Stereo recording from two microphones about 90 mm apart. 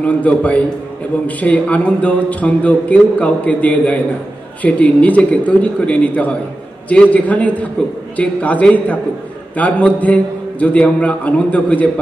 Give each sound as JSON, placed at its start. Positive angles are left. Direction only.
{"t": 0.0, "sound": "a man's voice", "side_deg": 15}